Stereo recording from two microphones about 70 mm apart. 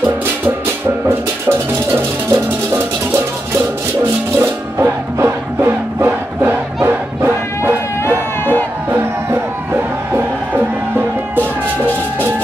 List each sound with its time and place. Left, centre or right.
1.9 s music: right
4.4 s music: right
10.1 s music: right